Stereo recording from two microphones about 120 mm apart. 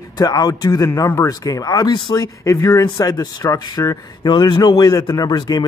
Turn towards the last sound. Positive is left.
turn(degrees=35)  # may be behind; listen again after turning